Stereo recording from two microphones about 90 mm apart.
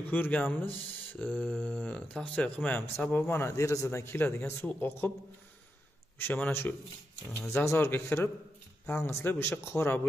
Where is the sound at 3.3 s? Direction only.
30° left (ahead or behind).